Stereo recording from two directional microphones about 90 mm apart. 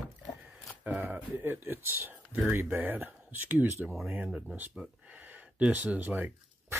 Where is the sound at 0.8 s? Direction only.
20° right (ahead or behind).